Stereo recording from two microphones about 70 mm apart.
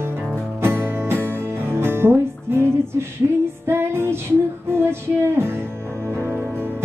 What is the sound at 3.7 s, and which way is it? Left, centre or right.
Music, right.